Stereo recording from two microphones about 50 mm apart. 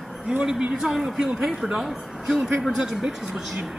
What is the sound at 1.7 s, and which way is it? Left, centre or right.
A woman's voice, centre.